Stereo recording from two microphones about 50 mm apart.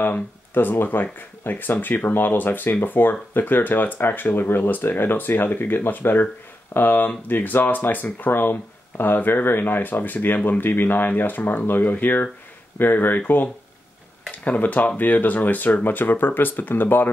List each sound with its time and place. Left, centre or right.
0.0 s speech: left
14.4 s speech: left